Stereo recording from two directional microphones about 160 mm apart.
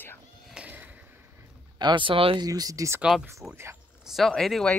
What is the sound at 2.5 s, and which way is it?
Speech, 20° right (ahead or behind).